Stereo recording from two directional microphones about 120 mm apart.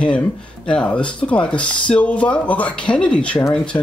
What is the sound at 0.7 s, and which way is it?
Speech, 10° left (ahead or behind).